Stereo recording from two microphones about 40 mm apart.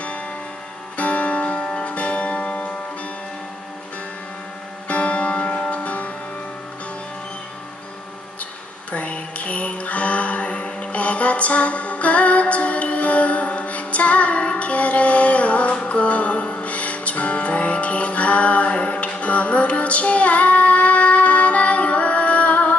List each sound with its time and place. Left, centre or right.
0.9 s guitar: left
1.9 s music: left
4.8 s music: left
8.9 s music: left